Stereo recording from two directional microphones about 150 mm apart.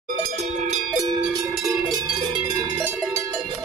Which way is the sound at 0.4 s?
45° right (ahead or behind).